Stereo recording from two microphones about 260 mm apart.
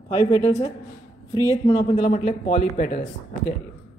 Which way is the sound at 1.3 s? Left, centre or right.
Centre.